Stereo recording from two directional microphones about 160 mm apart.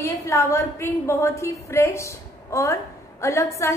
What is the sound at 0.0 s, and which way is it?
A woman's voice, 20° left (ahead or behind).